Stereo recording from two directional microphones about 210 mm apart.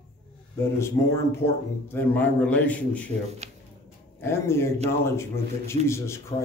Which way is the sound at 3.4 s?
30° right (ahead or behind).